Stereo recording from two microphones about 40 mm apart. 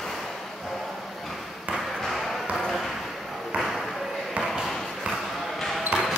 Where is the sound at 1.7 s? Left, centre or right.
Centre.